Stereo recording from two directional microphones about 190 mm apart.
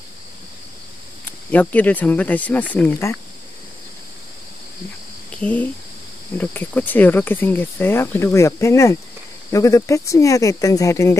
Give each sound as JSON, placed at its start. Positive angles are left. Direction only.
{"t": 1.5, "sound": "cricket", "side_deg": 10}
{"t": 5.4, "sound": "cricket", "side_deg": 10}